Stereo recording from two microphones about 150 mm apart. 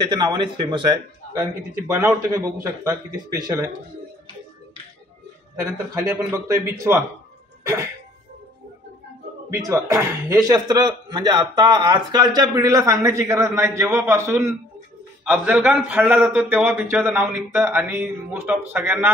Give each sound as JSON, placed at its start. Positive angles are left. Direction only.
{"t": 0.2, "sound": "speech", "side_deg": -25}
{"t": 1.3, "sound": "a man's voice", "side_deg": -15}
{"t": 5.6, "sound": "speech", "side_deg": -20}
{"t": 7.6, "sound": "music", "side_deg": -20}
{"t": 9.5, "sound": "a man's voice", "side_deg": -20}